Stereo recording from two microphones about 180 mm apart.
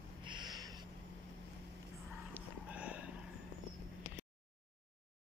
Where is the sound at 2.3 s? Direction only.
5° right (ahead or behind).